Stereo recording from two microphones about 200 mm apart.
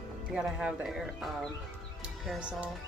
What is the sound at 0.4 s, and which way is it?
Speech, 5° right (ahead or behind).